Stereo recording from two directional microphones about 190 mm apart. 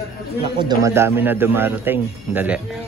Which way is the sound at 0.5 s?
20° right (ahead or behind).